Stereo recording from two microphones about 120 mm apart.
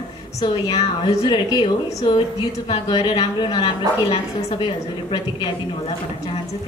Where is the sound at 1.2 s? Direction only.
40° left (ahead or behind).